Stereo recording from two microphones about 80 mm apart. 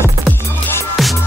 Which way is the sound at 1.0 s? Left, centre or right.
Centre.